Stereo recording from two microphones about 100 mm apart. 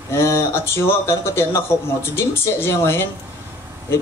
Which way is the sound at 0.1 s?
25° left (ahead or behind).